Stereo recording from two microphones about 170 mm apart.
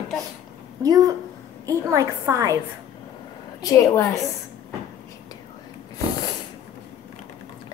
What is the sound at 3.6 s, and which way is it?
Speech, 20° left (ahead or behind).